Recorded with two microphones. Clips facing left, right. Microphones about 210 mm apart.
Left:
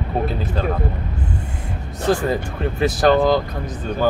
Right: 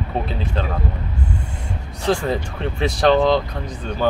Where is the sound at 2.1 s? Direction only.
5° left (ahead or behind).